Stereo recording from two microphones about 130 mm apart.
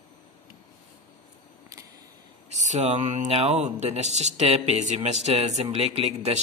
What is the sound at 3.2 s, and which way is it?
A man's voice, 55° right (ahead or behind).